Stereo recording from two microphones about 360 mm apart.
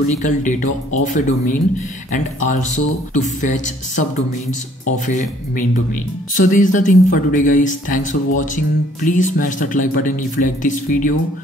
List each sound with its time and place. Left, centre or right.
0.2 s speech: left
5.0 s speech: left